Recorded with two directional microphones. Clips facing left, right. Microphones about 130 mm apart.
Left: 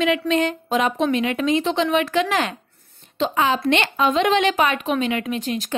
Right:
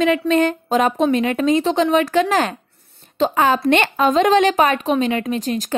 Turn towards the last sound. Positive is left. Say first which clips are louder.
# right 3 dB
turn(degrees=-40)  # may be behind; listen again after turning